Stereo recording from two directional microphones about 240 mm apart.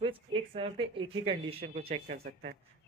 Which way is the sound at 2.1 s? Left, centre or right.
Right.